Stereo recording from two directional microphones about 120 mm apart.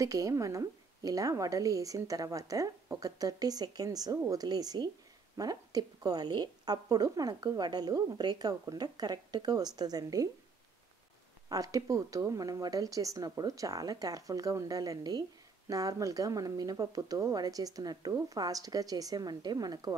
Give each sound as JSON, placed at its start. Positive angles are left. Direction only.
{"t": 0.0, "sound": "a woman's voice", "side_deg": -25}
{"t": 11.4, "sound": "a woman's voice", "side_deg": -30}